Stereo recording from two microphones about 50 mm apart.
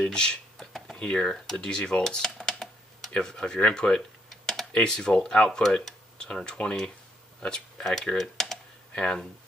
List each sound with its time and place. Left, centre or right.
0.0 s a sound: centre
0.9 s speech: centre
7.9 s computer keyboard: centre